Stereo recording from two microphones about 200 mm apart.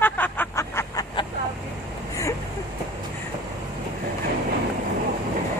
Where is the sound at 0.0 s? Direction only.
10° left (ahead or behind).